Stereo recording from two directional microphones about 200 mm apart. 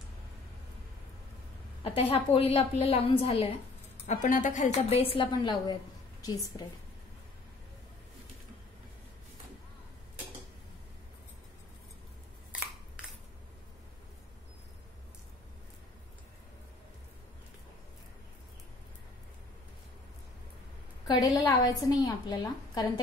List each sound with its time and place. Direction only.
1.8 s a woman's voice: 25° left (ahead or behind)
21.1 s a woman's voice: 20° left (ahead or behind)